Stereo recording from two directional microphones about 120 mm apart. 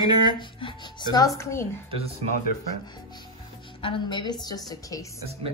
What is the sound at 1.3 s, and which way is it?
Speech, 25° left (ahead or behind).